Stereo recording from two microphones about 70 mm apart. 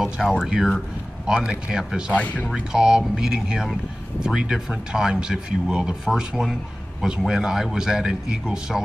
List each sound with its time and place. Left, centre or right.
0.3 s speech: centre
2.1 s speech: left
2.5 s speech: centre